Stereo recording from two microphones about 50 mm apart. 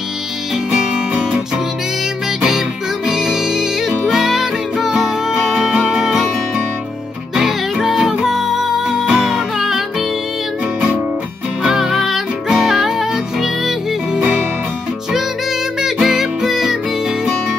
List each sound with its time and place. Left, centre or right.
0.7 s music: centre
3.1 s music: centre
7.3 s music: centre
11.6 s music: centre
15.8 s music: centre